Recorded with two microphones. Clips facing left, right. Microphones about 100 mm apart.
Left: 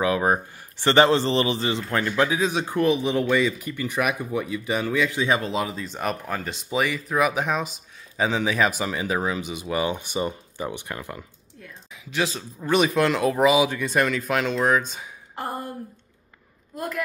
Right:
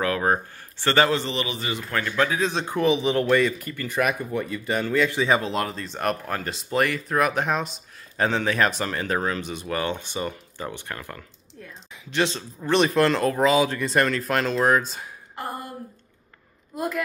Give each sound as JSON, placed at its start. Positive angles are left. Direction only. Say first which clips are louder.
{"t": 0.0, "sound": "a man's voice", "louder": "left 1 dB", "side_deg": 15}
{"t": 11.6, "sound": "speech", "louder": "even", "side_deg": 0}
{"t": 13.7, "sound": "speech", "louder": "right 1 dB", "side_deg": 0}
{"t": 16.7, "sound": "a woman's voice", "louder": "right 3 dB", "side_deg": -5}